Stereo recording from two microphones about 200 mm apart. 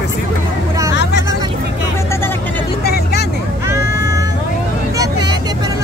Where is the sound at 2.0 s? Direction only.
10° left (ahead or behind).